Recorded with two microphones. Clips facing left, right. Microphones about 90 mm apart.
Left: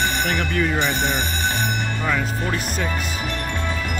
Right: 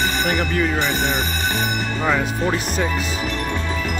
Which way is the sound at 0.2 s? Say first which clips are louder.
Right 2 dB; 10° right (ahead or behind).